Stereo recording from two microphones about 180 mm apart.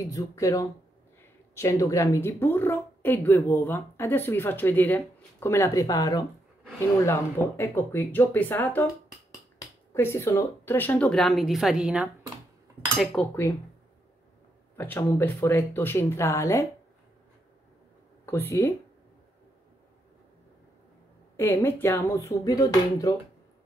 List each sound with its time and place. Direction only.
0.0 s a woman's voice: 20° left (ahead or behind); by 12.1 s 5° right (ahead or behind)
12.9 s cutlery: 5° left (ahead or behind)
14.8 s a woman's voice: 10° left (ahead or behind)
18.2 s speech: 15° left (ahead or behind)
21.4 s a woman's voice: 15° left (ahead or behind)